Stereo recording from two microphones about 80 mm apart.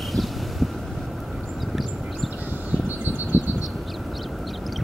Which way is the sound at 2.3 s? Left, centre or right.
Right.